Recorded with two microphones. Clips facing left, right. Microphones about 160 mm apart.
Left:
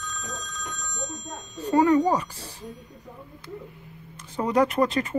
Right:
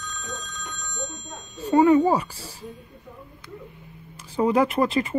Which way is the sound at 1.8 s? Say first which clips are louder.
Right 3 dB; 10° right (ahead or behind).